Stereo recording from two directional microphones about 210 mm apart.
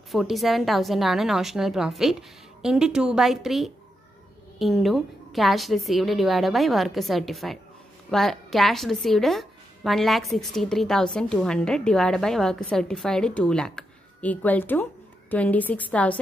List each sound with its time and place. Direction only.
0.1 s a woman's voice: centre (ahead or behind)